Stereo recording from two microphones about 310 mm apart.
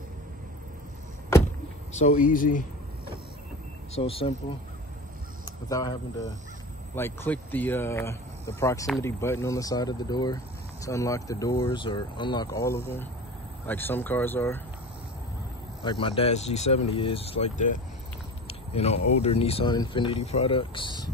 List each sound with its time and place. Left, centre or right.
2.0 s speech: left
3.9 s speech: centre
5.4 s speech: centre
15.8 s speech: centre
18.5 s a sound: centre
19.2 s speech: centre